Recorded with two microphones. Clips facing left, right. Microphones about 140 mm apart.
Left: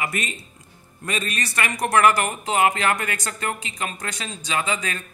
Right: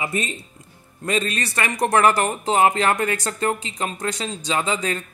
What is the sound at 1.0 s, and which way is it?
Speech, 30° right (ahead or behind).